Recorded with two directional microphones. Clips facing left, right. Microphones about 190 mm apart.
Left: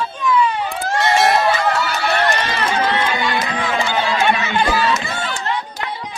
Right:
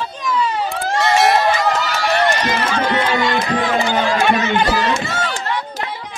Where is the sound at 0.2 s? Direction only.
40° right (ahead or behind).